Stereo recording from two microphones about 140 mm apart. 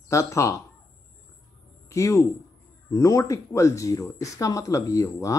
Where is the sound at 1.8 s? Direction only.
20° left (ahead or behind).